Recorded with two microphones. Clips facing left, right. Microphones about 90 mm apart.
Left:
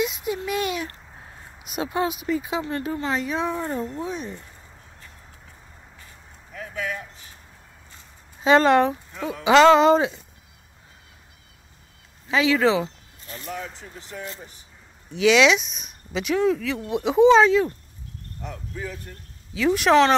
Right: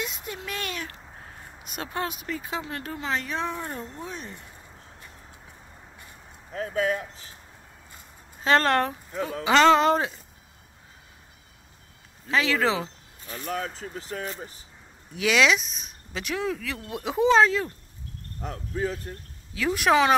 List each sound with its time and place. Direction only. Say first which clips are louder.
0.0 s a sound: left 9 dB; 5° left (ahead or behind)
1.6 s speech: left 6 dB; 5° left (ahead or behind)
6.5 s a man's voice: right 5 dB; 40° right (ahead or behind)
8.5 s speech: left 5 dB; 5° left (ahead or behind)
12.3 s speech: left 4 dB; centre (ahead or behind)
13.5 s speech: right 3 dB; 50° right (ahead or behind)
15.1 s speech: left 5 dB; centre (ahead or behind)
18.4 s a man's voice: right 4 dB; 40° right (ahead or behind)
19.5 s speech: left 4 dB; centre (ahead or behind)